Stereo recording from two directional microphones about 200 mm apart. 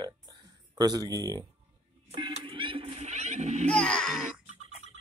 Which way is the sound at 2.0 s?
30° right (ahead or behind).